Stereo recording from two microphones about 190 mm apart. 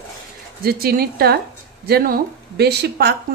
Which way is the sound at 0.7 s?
55° right (ahead or behind).